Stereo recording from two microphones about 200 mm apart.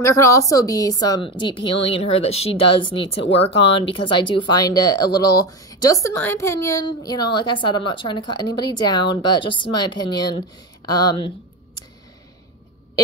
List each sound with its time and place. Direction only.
0.0 s a woman's voice: 15° left (ahead or behind)